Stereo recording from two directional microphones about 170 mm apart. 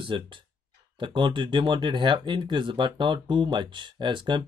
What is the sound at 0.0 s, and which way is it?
Speech, 30° right (ahead or behind).